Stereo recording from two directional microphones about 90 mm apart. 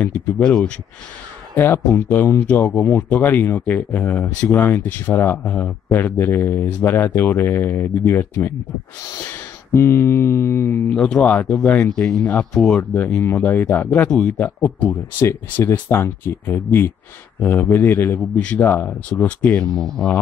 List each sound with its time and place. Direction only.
0.0 s speech: 10° left (ahead or behind)
1.9 s speech: 20° left (ahead or behind)
10.9 s speech: 10° left (ahead or behind)